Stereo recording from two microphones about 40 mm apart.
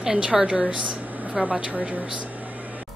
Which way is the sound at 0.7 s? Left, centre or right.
Right.